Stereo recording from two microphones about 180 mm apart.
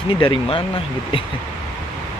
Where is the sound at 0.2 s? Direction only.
30° left (ahead or behind).